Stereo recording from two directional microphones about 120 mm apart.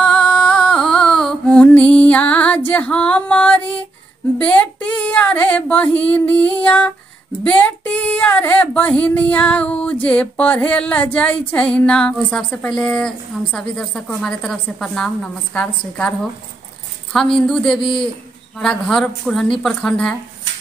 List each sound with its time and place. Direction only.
0.0 s music: 5° left (ahead or behind)
2.7 s a sound: 10° left (ahead or behind)
17.5 s speech: 5° left (ahead or behind)
17.7 s a man's voice: 45° left (ahead or behind)
18.6 s speech: 5° left (ahead or behind)